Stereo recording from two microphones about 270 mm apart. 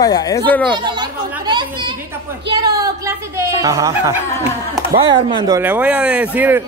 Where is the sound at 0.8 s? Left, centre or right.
Centre.